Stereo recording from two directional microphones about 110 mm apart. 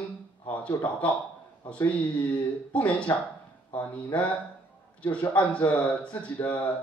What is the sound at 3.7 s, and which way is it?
Speech, 15° left (ahead or behind).